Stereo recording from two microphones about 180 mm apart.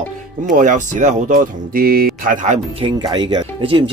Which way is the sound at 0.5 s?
45° right (ahead or behind).